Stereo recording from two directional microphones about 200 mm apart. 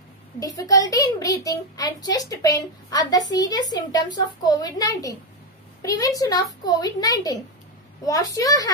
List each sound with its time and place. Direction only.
0.4 s a child's voice: 15° left (ahead or behind)